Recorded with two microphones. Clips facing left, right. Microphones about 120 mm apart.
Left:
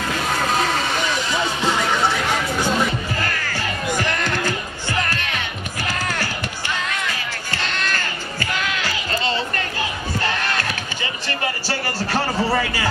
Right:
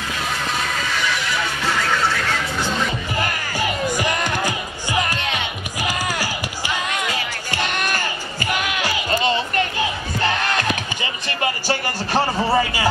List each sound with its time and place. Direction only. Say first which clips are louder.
0.4 s music: left 4 dB; 35° left (ahead or behind); by 2.9 s 15° left (ahead or behind)
3.2 s music: right 2 dB; 15° right (ahead or behind)
11.2 s a sound: right 4 dB; 15° right (ahead or behind)